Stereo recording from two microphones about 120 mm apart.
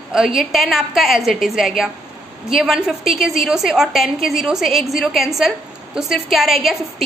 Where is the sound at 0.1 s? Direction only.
5° right (ahead or behind).